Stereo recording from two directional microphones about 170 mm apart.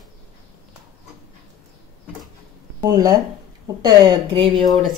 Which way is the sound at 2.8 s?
20° right (ahead or behind).